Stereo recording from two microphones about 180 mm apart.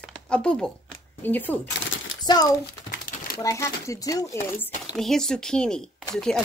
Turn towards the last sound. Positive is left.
turn(degrees=0)  # may be behind; listen again after turning